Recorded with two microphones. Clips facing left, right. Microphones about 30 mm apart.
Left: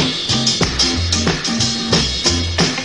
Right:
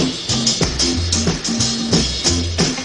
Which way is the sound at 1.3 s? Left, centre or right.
Left.